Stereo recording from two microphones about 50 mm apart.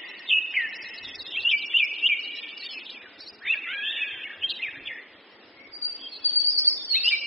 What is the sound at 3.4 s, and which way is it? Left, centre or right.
Bird, centre.